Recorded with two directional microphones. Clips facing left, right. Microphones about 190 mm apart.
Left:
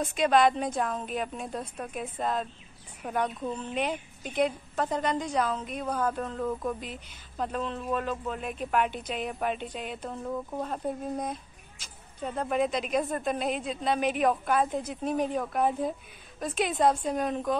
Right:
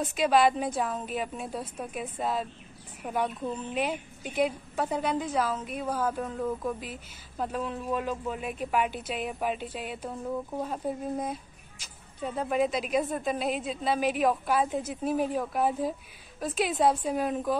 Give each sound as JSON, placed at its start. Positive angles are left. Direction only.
{"t": 0.0, "sound": "a woman's voice", "side_deg": -5}